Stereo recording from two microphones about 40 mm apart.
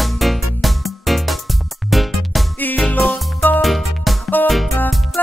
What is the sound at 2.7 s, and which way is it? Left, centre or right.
Music, left.